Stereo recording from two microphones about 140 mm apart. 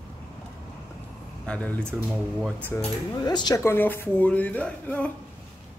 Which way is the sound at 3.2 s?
30° left (ahead or behind).